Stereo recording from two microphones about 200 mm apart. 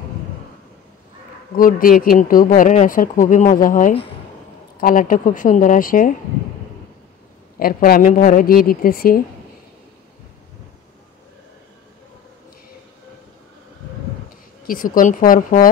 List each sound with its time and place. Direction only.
1.6 s speech: 45° left (ahead or behind)
4.7 s a woman's voice: 45° left (ahead or behind)
7.5 s speech: 45° left (ahead or behind)
14.7 s speech: 45° left (ahead or behind)